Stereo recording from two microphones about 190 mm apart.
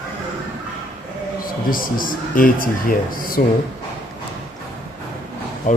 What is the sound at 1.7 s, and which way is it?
Speech, 45° left (ahead or behind).